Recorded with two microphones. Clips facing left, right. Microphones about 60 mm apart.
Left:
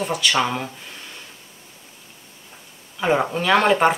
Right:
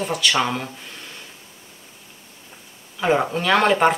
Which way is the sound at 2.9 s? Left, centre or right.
Centre.